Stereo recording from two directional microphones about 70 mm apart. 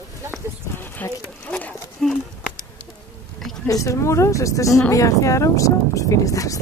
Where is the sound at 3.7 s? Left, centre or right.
Left.